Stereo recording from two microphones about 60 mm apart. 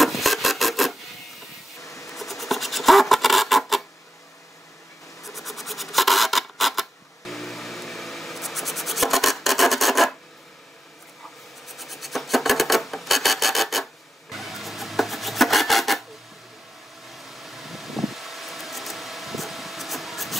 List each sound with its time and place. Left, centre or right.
0.0 s filing: centre
1.8 s a sound: left
2.1 s scratch: centre
5.2 s a sound: centre
11.6 s filing: centre
17.1 s vehicle: centre